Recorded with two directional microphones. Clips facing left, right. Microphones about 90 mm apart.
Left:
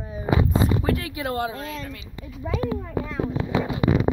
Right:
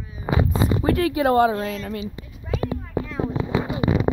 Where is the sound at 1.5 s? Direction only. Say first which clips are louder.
Right 7 dB; 45° right (ahead or behind).